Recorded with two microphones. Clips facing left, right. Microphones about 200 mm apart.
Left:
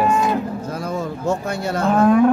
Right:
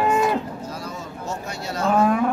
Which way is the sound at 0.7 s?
55° left (ahead or behind).